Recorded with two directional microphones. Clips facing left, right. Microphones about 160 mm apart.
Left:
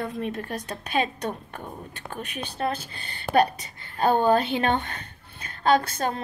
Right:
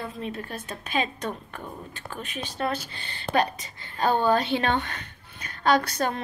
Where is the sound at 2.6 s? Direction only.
35° left (ahead or behind).